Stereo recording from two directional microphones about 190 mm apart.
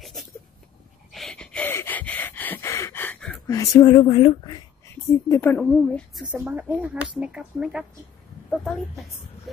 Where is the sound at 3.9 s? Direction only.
30° left (ahead or behind).